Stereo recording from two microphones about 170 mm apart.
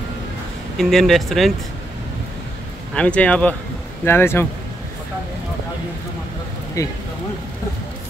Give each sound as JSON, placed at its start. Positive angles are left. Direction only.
{"t": 0.7, "sound": "speech", "side_deg": 0}
{"t": 2.9, "sound": "speech", "side_deg": 5}
{"t": 6.8, "sound": "speech", "side_deg": 20}